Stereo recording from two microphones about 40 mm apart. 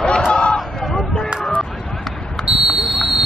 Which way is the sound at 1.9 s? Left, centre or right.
Centre.